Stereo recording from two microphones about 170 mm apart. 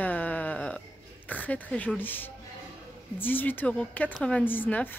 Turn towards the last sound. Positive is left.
turn(degrees=10)  # may be behind; listen again after turning